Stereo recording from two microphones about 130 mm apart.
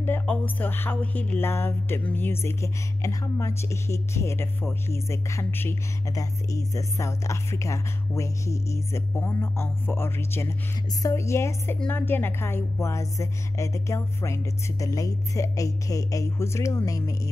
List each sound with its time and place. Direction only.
0.0 s speech: 15° left (ahead or behind)